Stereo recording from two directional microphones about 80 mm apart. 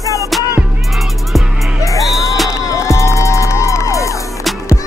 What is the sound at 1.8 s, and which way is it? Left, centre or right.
Music, left.